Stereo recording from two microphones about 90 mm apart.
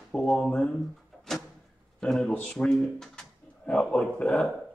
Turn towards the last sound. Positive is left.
turn(degrees=10)  # may be behind; listen again after turning